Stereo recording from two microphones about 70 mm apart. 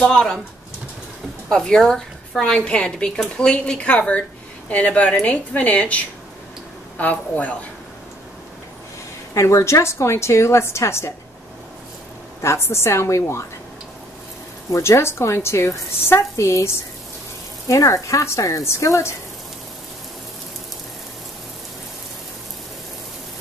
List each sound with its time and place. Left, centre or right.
0.0 s a woman's voice: centre
1.5 s a woman's voice: centre
9.3 s a woman's voice: left
12.4 s a woman's voice: left
14.7 s a woman's voice: left
17.6 s speech: left